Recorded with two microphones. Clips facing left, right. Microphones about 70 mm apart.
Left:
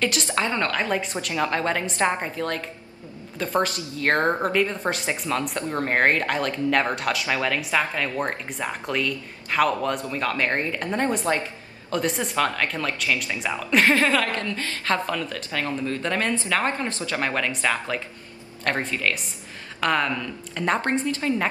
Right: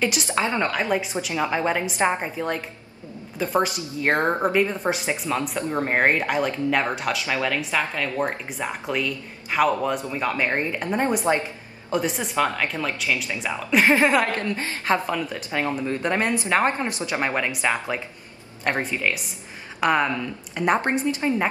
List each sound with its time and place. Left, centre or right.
0.0 s a woman's voice: centre
11.9 s a woman's voice: centre